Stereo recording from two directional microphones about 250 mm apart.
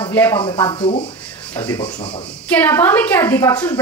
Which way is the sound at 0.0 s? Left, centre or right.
Centre.